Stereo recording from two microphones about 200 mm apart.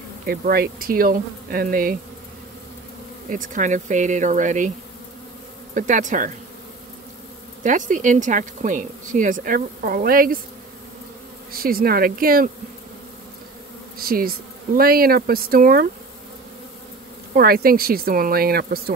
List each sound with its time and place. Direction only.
0.3 s speech: 50° right (ahead or behind)
3.3 s speech: 40° right (ahead or behind)
5.8 s speech: 40° right (ahead or behind)
7.6 s speech: 40° right (ahead or behind)
11.5 s speech: 45° right (ahead or behind)
13.9 s speech: 45° right (ahead or behind)
17.4 s speech: 50° right (ahead or behind)